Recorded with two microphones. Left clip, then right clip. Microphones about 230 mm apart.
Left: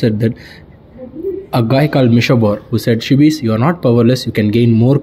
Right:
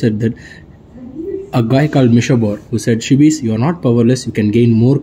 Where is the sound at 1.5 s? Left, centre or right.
Centre.